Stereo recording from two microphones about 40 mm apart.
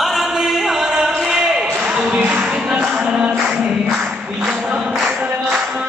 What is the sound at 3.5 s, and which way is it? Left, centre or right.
Music, right.